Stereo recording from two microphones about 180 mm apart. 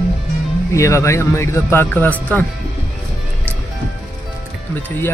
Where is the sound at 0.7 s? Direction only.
15° left (ahead or behind).